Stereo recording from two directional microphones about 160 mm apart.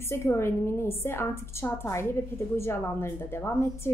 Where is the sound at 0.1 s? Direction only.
15° left (ahead or behind).